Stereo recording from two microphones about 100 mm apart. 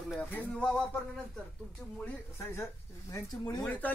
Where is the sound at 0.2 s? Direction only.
15° left (ahead or behind).